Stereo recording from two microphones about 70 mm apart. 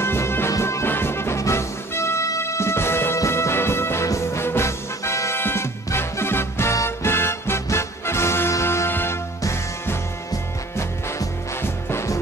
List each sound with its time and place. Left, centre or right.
0.0 s music: left
10.8 s music: left